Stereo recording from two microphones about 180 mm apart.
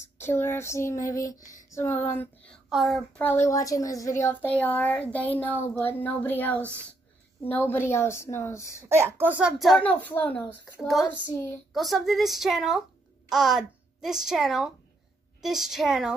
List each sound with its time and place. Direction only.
0.2 s speech: 15° left (ahead or behind)
1.1 s a sound: 20° left (ahead or behind)
2.0 s speech: 10° left (ahead or behind)
3.2 s speech: 10° left (ahead or behind)
8.8 s a child's voice: 15° right (ahead or behind)